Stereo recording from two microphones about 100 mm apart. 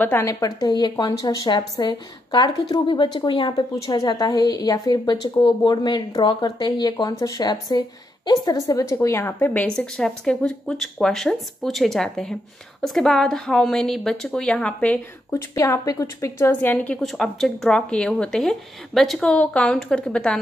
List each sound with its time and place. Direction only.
0.0 s a woman's voice: 25° left (ahead or behind)
0.3 s a woman's voice: 40° left (ahead or behind)
3.5 s a woman's voice: 40° left (ahead or behind); by 15.4 s 15° left (ahead or behind)
15.5 s a woman's voice: 30° left (ahead or behind)
17.0 s a woman's voice: centre (ahead or behind)